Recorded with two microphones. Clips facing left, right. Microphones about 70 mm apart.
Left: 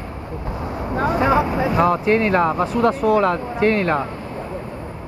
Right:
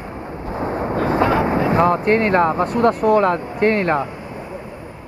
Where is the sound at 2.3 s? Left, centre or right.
Centre.